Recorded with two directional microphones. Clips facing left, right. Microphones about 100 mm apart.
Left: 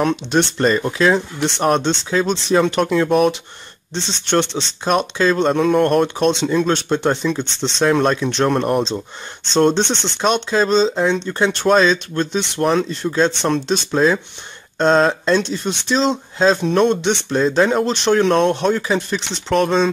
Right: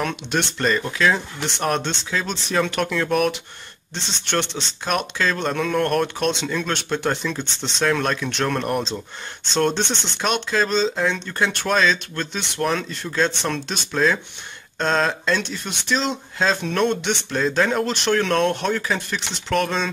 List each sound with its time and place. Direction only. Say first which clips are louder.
0.0 s speech: left 7 dB; 30° left (ahead or behind)